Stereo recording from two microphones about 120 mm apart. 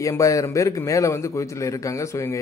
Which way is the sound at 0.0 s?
25° left (ahead or behind).